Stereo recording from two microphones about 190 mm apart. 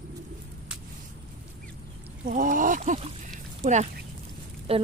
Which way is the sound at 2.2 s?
45° right (ahead or behind).